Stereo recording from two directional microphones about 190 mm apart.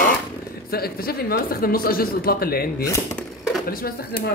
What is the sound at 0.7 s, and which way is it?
Speech, 55° left (ahead or behind).